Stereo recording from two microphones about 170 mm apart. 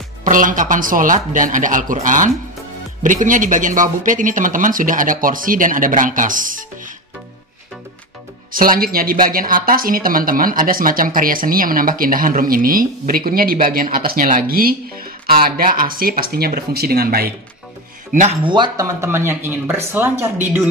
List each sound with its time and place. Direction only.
0.2 s speech: 50° right (ahead or behind)
8.5 s speech: 55° right (ahead or behind)
18.4 s speech: 25° right (ahead or behind); by 20.2 s 10° right (ahead or behind)